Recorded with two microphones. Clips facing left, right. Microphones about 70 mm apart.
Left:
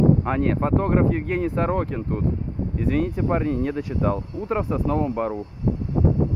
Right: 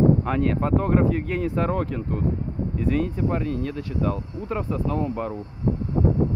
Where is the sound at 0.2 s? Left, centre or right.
Centre.